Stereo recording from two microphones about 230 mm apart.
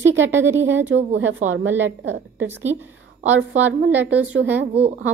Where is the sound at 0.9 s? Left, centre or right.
Right.